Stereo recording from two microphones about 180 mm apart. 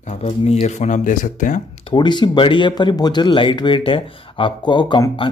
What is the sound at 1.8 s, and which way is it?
Speech, 25° left (ahead or behind).